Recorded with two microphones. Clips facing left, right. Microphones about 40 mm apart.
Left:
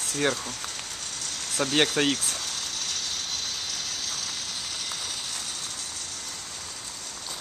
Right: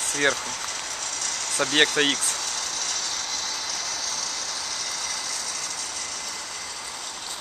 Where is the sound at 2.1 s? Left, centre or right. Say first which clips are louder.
Right 2 dB; right.